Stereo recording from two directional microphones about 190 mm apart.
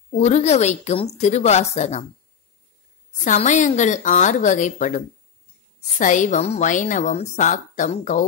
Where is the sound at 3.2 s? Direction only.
40° left (ahead or behind).